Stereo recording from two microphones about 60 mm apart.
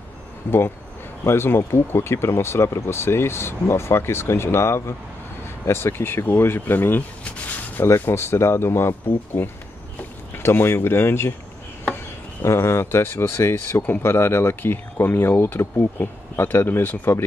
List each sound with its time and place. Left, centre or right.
0.5 s speech: left
8.0 s speech: left
12.4 s speech: left